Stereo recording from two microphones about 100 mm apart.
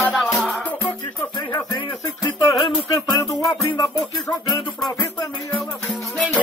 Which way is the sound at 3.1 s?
35° left (ahead or behind).